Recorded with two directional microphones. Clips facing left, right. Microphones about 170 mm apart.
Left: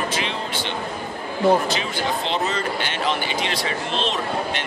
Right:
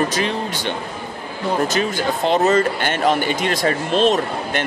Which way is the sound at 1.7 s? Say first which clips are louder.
Right 4 dB; 45° right (ahead or behind).